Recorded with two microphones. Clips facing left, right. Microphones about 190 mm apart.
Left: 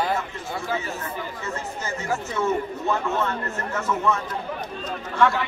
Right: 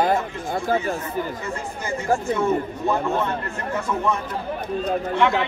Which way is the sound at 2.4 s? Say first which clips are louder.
Right 2 dB; 15° right (ahead or behind).